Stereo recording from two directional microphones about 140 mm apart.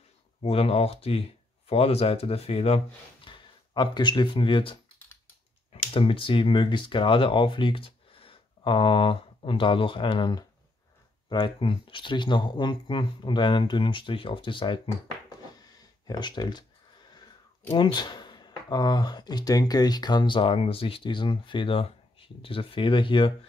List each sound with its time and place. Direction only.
0.4 s speech: 45° left (ahead or behind)
3.3 s speech: 35° left (ahead or behind)
16.1 s speech: 30° left (ahead or behind)
17.7 s speech: 30° left (ahead or behind)